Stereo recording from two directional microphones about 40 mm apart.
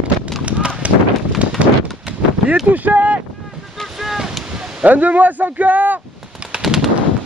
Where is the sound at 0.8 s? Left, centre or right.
Right.